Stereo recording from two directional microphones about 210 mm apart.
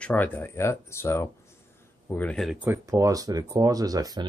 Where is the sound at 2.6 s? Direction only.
15° right (ahead or behind).